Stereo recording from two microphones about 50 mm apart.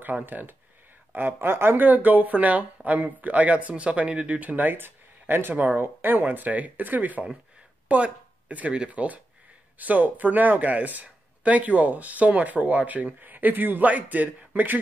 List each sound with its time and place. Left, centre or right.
0.2 s speech: right
1.8 s speech: right
4.4 s speech: right